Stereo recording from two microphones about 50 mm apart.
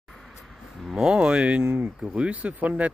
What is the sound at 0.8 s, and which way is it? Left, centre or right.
Speech, centre.